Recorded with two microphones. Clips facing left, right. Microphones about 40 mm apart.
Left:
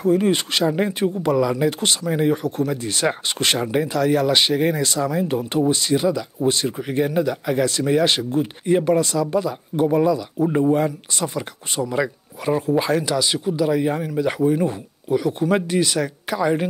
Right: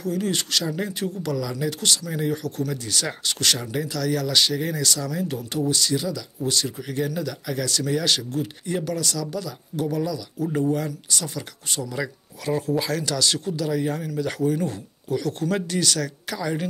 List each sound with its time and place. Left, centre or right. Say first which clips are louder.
0.0 s speech: left 8 dB; left